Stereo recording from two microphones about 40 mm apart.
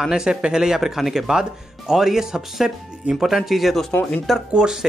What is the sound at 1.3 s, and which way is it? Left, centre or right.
A man's voice, centre.